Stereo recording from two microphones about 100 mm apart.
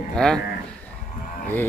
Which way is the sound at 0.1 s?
5° left (ahead or behind).